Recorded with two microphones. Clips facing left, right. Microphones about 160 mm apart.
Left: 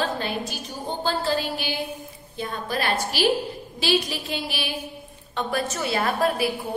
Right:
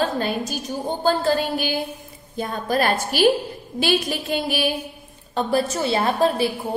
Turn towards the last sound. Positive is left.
turn(degrees=-25)  # may be behind; listen again after turning